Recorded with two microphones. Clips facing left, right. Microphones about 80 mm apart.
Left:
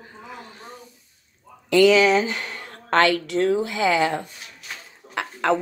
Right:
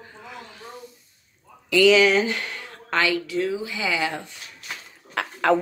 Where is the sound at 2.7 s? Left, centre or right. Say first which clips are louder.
Left 5 dB; left.